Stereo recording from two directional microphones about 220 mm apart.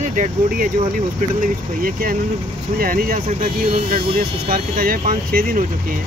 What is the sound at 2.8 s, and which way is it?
Speech, 40° right (ahead or behind).